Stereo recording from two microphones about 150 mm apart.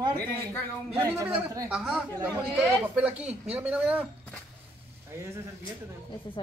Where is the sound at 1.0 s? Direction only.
15° right (ahead or behind).